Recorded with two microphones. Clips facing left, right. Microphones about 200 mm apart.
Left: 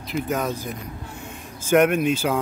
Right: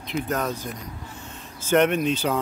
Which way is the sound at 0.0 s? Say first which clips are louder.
Left 1 dB; 5° left (ahead or behind).